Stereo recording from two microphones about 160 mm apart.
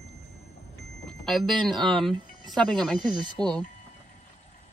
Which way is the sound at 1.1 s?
Centre (ahead or behind).